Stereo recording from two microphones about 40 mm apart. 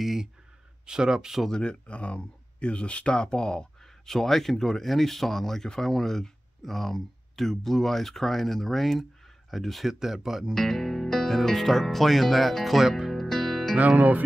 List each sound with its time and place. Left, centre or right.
0.0 s speech: centre
0.8 s speech: centre
1.5 s speech: left
4.1 s speech: centre
10.5 s speech: centre
12.8 s speech: centre
13.1 s music: centre
13.7 s speech: right